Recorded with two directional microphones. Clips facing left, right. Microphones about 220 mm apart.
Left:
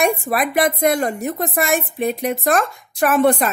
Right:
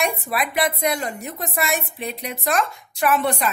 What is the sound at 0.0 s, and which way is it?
A woman's voice, 50° left (ahead or behind).